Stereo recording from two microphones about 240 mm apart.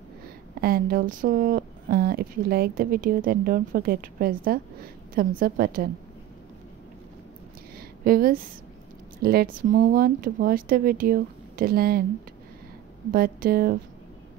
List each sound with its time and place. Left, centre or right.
0.6 s speech: right
7.7 s a sound: right
9.2 s speech: right
13.1 s speech: right